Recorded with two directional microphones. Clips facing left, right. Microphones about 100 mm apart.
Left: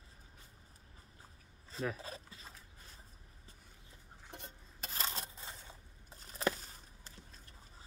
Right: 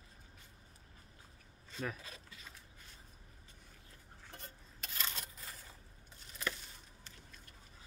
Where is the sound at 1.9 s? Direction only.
35° left (ahead or behind).